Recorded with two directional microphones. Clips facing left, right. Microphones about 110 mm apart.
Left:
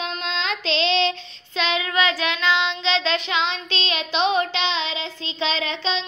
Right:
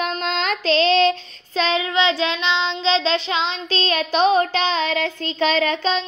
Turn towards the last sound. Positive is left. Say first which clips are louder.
# right 6 dB
turn(degrees=-45)  # may be behind; listen again after turning